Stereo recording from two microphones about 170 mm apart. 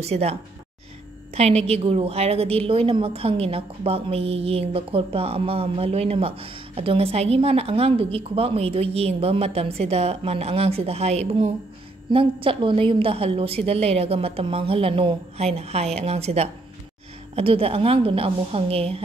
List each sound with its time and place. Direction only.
0.0 s a woman's voice: 40° right (ahead or behind)